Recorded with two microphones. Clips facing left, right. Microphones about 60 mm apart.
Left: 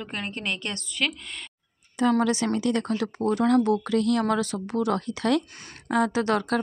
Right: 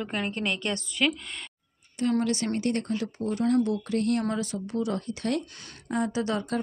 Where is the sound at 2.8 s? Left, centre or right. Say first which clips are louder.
Left 4 dB; left.